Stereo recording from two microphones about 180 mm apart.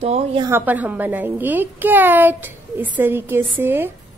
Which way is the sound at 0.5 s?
10° right (ahead or behind).